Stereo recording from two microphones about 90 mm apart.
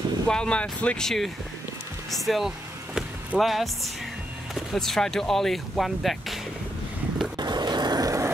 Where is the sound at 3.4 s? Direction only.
Centre (ahead or behind).